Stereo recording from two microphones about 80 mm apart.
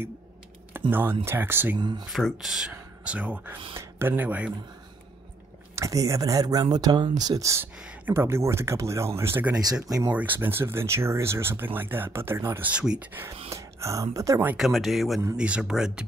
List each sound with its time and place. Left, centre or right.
0.7 s speech: right
1.8 s speech: right
2.3 s speech: centre
3.7 s speech: right
5.8 s speech: right
7.7 s speech: centre
8.1 s speech: right
10.0 s speech: right
12.7 s speech: centre
13.0 s speech: right
13.6 s speech: right
14.6 s speech: centre
15.3 s speech: centre